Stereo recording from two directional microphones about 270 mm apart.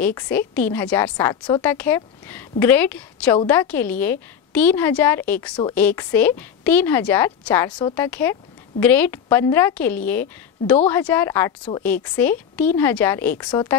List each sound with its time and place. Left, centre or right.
0.0 s a woman's voice: centre